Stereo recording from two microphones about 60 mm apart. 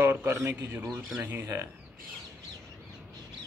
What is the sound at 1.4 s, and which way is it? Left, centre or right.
Speech, right.